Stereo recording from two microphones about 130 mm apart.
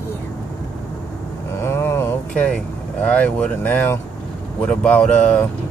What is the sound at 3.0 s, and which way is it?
Speech, 10° left (ahead or behind).